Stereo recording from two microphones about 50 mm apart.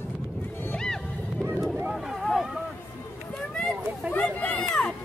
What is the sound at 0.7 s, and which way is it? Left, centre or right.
Music, centre.